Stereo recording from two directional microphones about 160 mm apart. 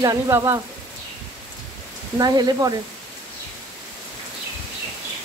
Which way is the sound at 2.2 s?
25° right (ahead or behind).